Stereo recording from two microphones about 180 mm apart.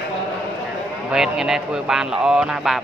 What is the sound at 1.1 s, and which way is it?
Speech, 5° right (ahead or behind).